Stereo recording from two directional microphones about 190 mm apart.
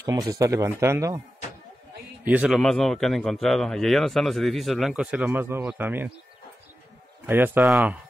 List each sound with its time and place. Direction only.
0.0 s speech: 20° right (ahead or behind)
2.2 s speech: 5° right (ahead or behind)
7.2 s speech: 10° right (ahead or behind)